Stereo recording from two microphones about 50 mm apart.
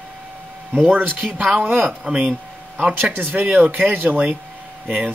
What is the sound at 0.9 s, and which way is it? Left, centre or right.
Speech, right.